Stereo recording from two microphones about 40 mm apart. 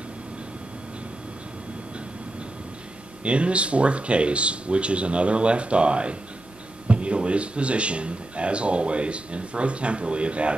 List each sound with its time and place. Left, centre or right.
3.3 s speech: right